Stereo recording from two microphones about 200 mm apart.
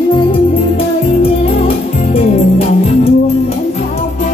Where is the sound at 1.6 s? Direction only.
30° left (ahead or behind).